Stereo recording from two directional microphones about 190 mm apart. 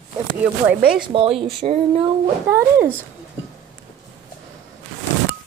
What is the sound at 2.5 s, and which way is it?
Speech, 15° right (ahead or behind).